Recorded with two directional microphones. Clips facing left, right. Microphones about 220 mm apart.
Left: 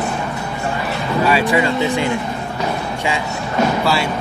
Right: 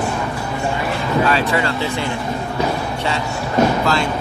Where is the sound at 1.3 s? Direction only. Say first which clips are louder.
Left 2 dB; 15° left (ahead or behind).